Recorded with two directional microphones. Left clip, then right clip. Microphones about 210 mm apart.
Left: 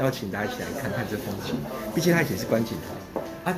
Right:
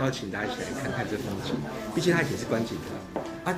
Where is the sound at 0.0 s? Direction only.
50° left (ahead or behind).